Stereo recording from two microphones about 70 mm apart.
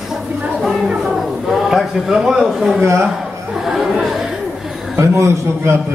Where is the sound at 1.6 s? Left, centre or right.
Centre.